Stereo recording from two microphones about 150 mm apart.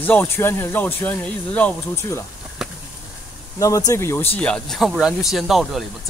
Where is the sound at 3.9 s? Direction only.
15° left (ahead or behind).